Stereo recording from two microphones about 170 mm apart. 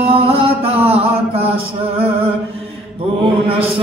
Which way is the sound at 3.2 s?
35° right (ahead or behind).